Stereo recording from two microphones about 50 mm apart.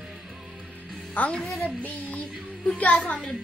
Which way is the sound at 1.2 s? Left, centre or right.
Left.